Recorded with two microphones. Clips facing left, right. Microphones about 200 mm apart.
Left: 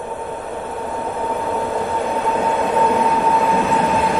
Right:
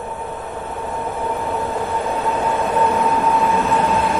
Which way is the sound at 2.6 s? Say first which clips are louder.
Left 1 dB; 15° left (ahead or behind).